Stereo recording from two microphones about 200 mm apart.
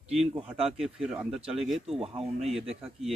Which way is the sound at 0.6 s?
Centre (ahead or behind).